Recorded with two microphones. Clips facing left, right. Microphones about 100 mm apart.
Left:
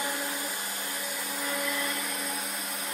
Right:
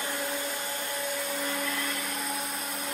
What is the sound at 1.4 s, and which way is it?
Vacuum cleaner, 5° left (ahead or behind).